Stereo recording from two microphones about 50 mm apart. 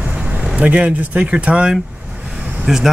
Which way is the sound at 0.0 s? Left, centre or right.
Right.